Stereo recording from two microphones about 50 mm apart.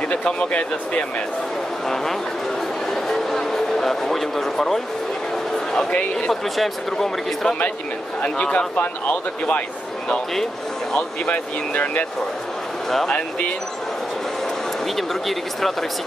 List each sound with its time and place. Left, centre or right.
0.1 s speech: left
2.9 s a sound: centre
5.9 s speech: left
6.5 s speech: centre
8.2 s speech: left
10.3 s speech: centre
11.0 s speech: left
15.0 s speech: centre